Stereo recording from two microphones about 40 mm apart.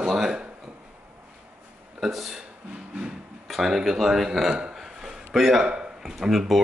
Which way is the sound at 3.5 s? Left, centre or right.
Centre.